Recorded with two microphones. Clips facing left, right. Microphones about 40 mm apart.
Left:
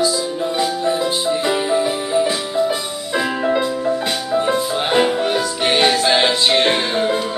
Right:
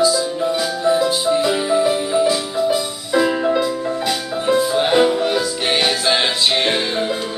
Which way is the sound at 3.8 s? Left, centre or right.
Centre.